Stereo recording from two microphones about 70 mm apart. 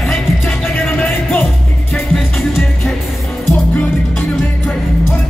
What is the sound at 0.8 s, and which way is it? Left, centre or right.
Music, left.